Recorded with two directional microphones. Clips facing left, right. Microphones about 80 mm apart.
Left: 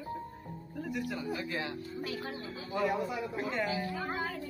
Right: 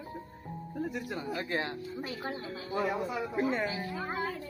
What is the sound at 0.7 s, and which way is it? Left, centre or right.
Speech, right.